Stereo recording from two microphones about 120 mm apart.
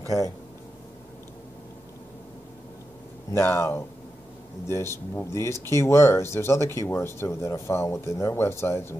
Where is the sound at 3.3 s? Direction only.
20° left (ahead or behind).